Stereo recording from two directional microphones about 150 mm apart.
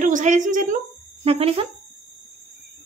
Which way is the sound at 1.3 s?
40° right (ahead or behind).